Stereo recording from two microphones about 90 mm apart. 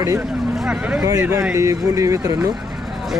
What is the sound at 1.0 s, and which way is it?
Speech, 30° right (ahead or behind).